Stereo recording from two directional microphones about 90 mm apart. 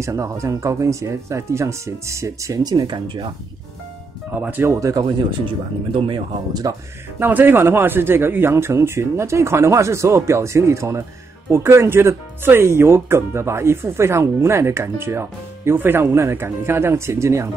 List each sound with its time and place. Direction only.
0.0 s speech: 35° right (ahead or behind)
4.4 s speech: 20° right (ahead or behind)
4.6 s speech: 35° right (ahead or behind)
5.9 s speech: 65° right (ahead or behind)
7.2 s speech: 20° right (ahead or behind)